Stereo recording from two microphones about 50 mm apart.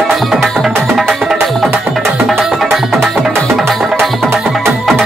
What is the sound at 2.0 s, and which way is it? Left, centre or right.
Music, right.